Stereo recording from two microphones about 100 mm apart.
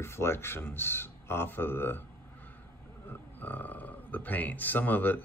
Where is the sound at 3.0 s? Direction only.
20° left (ahead or behind).